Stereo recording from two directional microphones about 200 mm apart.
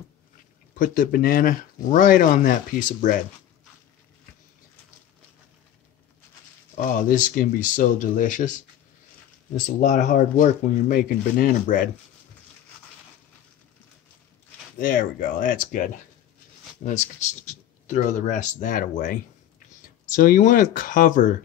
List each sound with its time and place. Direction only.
0.7 s speech: 45° left (ahead or behind)
6.8 s speech: 40° left (ahead or behind)
9.8 s speech: 40° left (ahead or behind)
14.8 s speech: 45° left (ahead or behind)